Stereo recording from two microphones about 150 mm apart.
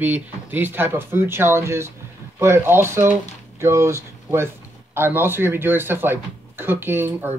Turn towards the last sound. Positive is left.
turn(degrees=-15)  # may be behind; listen again after turning